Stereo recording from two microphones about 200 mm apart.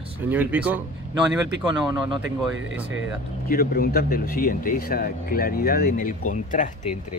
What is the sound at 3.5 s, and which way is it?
Speech, 50° left (ahead or behind).